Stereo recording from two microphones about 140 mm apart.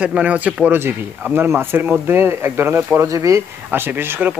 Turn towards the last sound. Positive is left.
turn(degrees=-15)  # may be behind; listen again after turning